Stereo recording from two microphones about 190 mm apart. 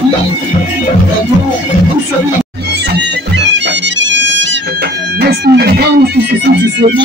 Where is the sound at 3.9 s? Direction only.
70° right (ahead or behind).